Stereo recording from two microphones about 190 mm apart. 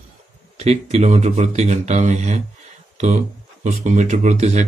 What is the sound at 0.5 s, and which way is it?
Speech, 35° right (ahead or behind).